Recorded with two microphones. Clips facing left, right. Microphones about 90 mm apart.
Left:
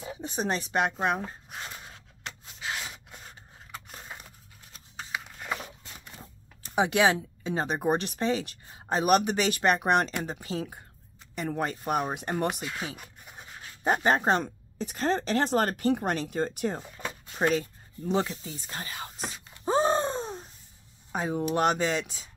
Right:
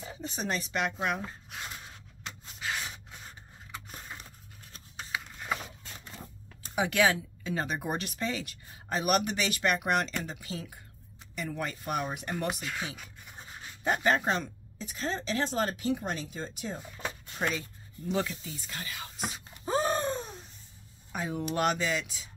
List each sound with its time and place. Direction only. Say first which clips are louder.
0.0 s speech: left 5 dB; 20° left (ahead or behind)
4.9 s a sound: left 1 dB; 5° left (ahead or behind)
6.7 s speech: left 3 dB; 25° left (ahead or behind)
13.8 s speech: left 3 dB; 35° left (ahead or behind); by 16.8 s 55° left (ahead or behind)
17.4 s speech: left 7 dB; 45° left (ahead or behind)
18.0 s speech: left 3 dB; 30° left (ahead or behind)
19.1 s wail: right 1 dB; 15° right (ahead or behind)
19.6 s a sound: left 4 dB; 25° left (ahead or behind)
21.1 s speech: left 5 dB; 25° left (ahead or behind)